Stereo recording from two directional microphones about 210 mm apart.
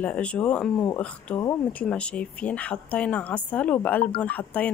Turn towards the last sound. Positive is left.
turn(degrees=5)  # may be behind; listen again after turning